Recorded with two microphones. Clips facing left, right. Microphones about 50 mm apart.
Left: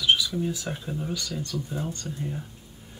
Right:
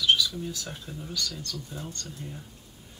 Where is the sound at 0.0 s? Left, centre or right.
Centre.